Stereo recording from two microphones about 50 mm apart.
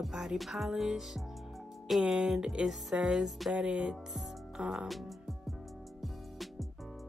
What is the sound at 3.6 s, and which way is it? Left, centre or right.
Speech, centre.